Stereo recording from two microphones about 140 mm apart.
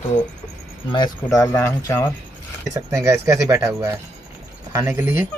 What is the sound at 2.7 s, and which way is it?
Speech, 20° right (ahead or behind).